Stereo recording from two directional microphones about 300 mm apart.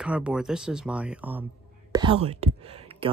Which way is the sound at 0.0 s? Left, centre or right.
Centre.